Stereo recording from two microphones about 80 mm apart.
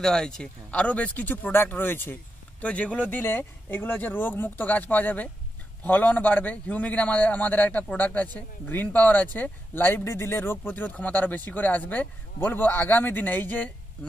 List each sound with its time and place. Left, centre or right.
0.0 s speech: centre; by 2.1 s left
2.6 s speech: centre